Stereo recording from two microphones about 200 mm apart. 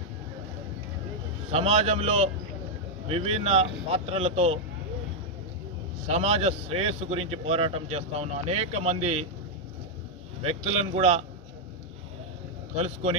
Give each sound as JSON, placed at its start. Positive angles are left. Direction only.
{"t": 1.5, "sound": "a man's voice", "side_deg": -30}
{"t": 6.0, "sound": "a man's voice", "side_deg": -30}
{"t": 10.4, "sound": "a man's voice", "side_deg": -30}
{"t": 12.7, "sound": "a man's voice", "side_deg": -30}